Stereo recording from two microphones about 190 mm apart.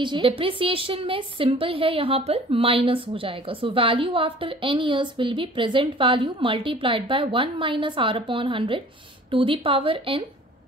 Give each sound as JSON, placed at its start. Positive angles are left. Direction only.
{"t": 0.0, "sound": "a woman's voice", "side_deg": -25}